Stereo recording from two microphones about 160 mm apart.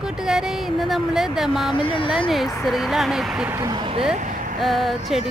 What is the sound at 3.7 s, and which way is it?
Speech, 35° right (ahead or behind).